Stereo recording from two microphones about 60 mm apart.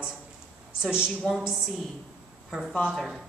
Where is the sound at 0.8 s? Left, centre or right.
Centre.